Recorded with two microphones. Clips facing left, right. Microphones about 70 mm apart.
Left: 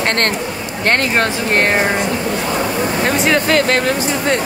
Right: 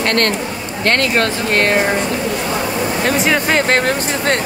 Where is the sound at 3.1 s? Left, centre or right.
Centre.